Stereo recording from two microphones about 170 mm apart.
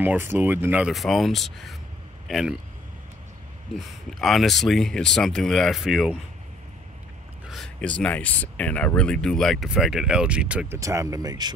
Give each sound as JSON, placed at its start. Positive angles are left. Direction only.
{"t": 0.0, "sound": "a man's voice", "side_deg": -10}
{"t": 3.7, "sound": "speech", "side_deg": 0}
{"t": 7.4, "sound": "speech", "side_deg": 0}
{"t": 10.8, "sound": "speech", "side_deg": -20}